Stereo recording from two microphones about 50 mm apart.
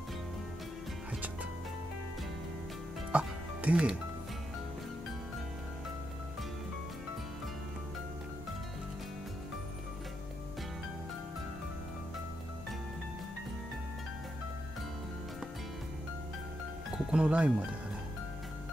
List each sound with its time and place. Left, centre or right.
3.1 s music: right
16.9 s music: centre